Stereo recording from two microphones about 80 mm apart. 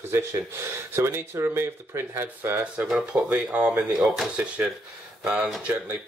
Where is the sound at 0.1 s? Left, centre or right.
Right.